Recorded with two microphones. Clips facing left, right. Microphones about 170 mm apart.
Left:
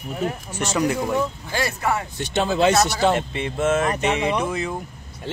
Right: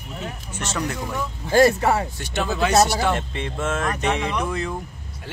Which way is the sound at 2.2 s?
25° left (ahead or behind).